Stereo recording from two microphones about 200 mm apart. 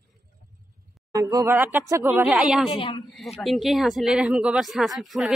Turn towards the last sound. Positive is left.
turn(degrees=0)  # may be behind; listen again after turning